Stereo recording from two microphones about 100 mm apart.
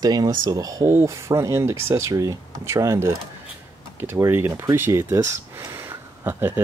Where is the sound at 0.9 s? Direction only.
25° right (ahead or behind).